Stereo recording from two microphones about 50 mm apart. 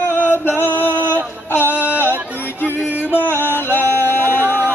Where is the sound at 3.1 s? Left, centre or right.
Left.